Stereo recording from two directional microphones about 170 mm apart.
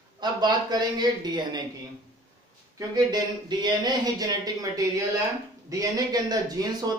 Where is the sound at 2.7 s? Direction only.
25° right (ahead or behind).